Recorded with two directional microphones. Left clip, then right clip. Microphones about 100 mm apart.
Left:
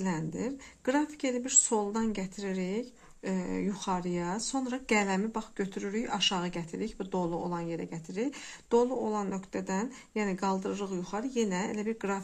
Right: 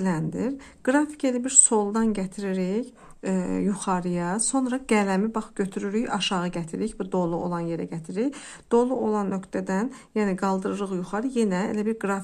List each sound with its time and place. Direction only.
0.0 s a woman's voice: 50° right (ahead or behind)
4.7 s speech: 40° right (ahead or behind)